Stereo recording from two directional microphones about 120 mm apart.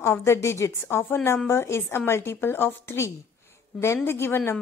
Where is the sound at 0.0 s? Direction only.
20° left (ahead or behind).